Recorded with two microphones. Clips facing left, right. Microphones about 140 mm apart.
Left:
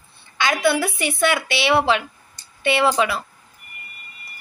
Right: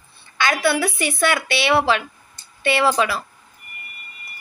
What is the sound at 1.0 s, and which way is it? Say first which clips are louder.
A woman's voice: even; 25° left (ahead or behind).